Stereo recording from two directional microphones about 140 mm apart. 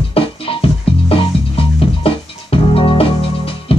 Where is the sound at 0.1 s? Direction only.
40° left (ahead or behind).